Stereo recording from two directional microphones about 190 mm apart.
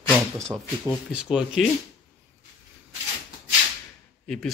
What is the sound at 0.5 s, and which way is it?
Speech, 15° right (ahead or behind).